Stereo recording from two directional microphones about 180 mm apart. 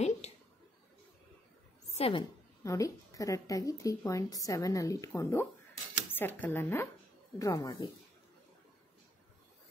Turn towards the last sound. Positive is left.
turn(degrees=20)  # may be behind; listen again after turning